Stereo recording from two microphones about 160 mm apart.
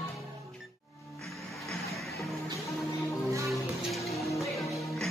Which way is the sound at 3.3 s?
20° right (ahead or behind).